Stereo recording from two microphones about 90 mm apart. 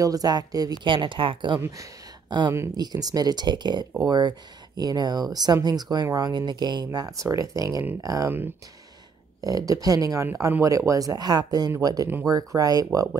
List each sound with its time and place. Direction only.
0.0 s speech: 45° right (ahead or behind)
0.8 s speech: 65° right (ahead or behind)
2.2 s speech: 55° right (ahead or behind)
8.3 s speech: 25° right (ahead or behind)
9.4 s speech: 45° right (ahead or behind)